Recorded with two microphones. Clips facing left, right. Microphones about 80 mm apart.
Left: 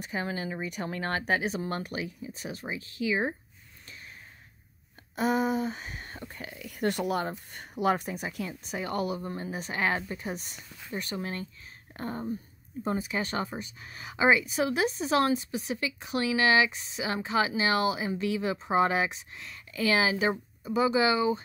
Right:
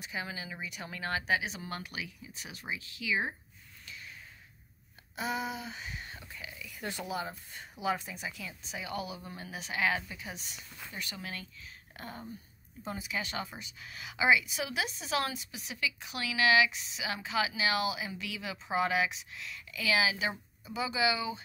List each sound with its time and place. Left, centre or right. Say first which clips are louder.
0.0 s a woman's voice: left 7 dB; left
5.1 s a woman's voice: left 9 dB; left